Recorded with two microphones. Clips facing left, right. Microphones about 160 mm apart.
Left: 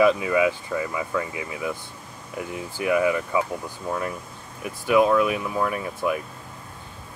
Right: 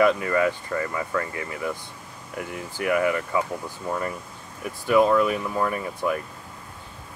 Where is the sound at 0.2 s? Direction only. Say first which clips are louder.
Left 1 dB; 5° left (ahead or behind).